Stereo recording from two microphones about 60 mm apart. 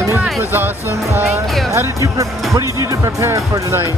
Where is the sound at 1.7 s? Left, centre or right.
Right.